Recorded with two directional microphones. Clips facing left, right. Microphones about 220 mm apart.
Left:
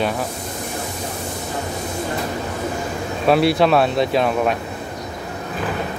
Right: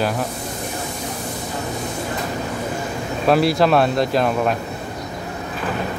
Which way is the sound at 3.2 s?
Centre (ahead or behind).